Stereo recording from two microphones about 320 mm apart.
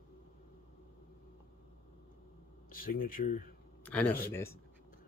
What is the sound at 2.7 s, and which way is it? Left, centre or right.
Speech, left.